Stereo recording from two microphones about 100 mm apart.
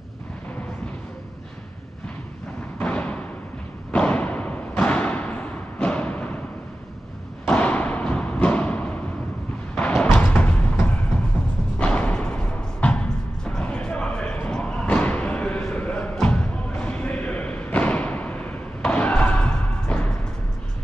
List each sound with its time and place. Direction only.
2.8 s thump: 15° left (ahead or behind)
7.4 s thump: 15° left (ahead or behind)
9.8 s music: 15° left (ahead or behind)
10.1 s a sound: 20° left (ahead or behind)
11.8 s music: 10° left (ahead or behind)